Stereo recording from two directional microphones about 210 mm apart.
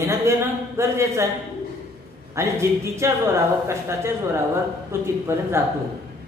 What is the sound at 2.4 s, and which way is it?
A woman's voice, 15° right (ahead or behind).